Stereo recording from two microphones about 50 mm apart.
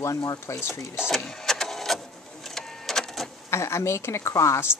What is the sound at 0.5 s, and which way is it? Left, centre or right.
Speech, left.